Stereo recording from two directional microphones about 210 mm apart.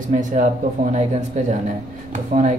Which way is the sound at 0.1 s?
35° right (ahead or behind).